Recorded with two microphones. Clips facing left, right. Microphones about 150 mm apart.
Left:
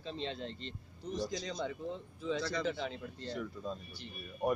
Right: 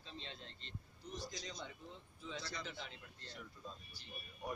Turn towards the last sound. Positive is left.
turn(degrees=75)  # may be behind; listen again after turning